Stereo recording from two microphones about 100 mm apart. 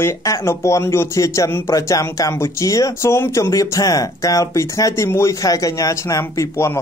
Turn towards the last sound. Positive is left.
turn(degrees=30)  # may be behind; listen again after turning